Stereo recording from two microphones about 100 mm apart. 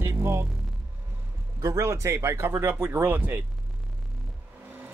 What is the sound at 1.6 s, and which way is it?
Speech, 30° right (ahead or behind).